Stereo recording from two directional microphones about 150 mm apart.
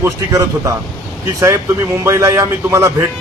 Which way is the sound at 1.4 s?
20° right (ahead or behind).